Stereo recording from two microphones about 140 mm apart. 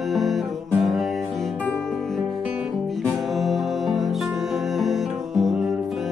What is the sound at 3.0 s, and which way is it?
Music, centre (ahead or behind).